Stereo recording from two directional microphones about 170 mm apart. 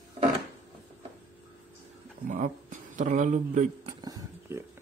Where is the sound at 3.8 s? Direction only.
20° right (ahead or behind).